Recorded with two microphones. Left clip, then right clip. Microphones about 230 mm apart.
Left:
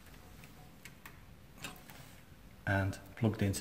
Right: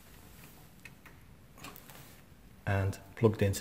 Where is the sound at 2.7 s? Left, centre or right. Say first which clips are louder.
Even; right.